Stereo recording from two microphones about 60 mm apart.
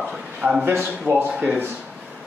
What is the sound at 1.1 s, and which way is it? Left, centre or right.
Speech, right.